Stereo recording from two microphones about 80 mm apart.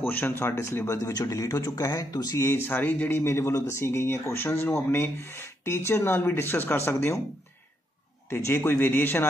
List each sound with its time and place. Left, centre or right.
0.0 s speech: left
2.4 s speech: left
8.3 s a man's voice: left